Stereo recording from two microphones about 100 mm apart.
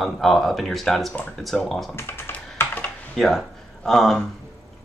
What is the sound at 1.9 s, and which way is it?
Computer keyboard, 25° left (ahead or behind).